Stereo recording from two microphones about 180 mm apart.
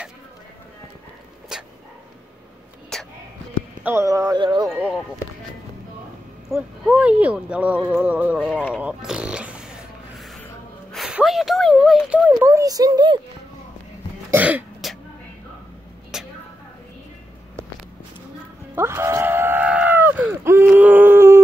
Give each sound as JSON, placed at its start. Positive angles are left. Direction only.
{"t": 1.5, "sound": "dog", "side_deg": -5}
{"t": 2.9, "sound": "a sound", "side_deg": 5}
{"t": 3.8, "sound": "a child's voice", "side_deg": -15}
{"t": 6.5, "sound": "speech", "side_deg": -5}
{"t": 8.8, "sound": "zipper", "side_deg": -5}
{"t": 10.9, "sound": "a sound", "side_deg": 0}
{"t": 12.3, "sound": "a child's voice", "side_deg": -15}
{"t": 14.3, "sound": "throat clearing", "side_deg": -10}
{"t": 16.1, "sound": "a sound", "side_deg": -5}
{"t": 18.8, "sound": "screaming", "side_deg": -15}